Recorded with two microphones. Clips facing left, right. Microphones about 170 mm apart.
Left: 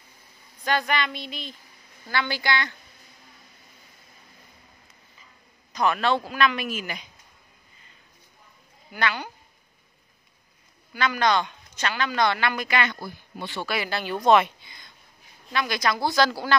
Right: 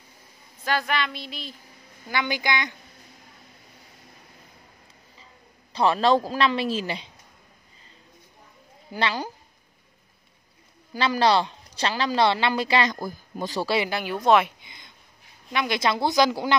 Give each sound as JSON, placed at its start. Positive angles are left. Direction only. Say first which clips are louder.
{"t": 0.7, "sound": "a sound", "louder": "left 1 dB", "side_deg": 0}
{"t": 2.0, "sound": "a woman's voice", "louder": "even", "side_deg": -15}
{"t": 5.7, "sound": "a woman's voice", "louder": "right 3 dB", "side_deg": -30}
{"t": 8.9, "sound": "a woman's voice", "louder": "right 1 dB", "side_deg": -35}
{"t": 10.9, "sound": "a woman's voice", "louder": "right 2 dB", "side_deg": -30}
{"t": 13.7, "sound": "a woman's voice", "louder": "right 3 dB", "side_deg": -15}
{"t": 14.2, "sound": "a sound", "louder": "left 1 dB", "side_deg": -5}
{"t": 14.6, "sound": "a sound", "louder": "right 1 dB", "side_deg": -20}
{"t": 15.5, "sound": "a woman's voice", "louder": "right 1 dB", "side_deg": -20}